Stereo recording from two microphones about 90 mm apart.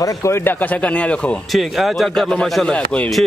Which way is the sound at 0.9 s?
15° left (ahead or behind).